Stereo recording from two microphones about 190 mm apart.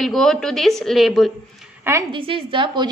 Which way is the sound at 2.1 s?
30° right (ahead or behind).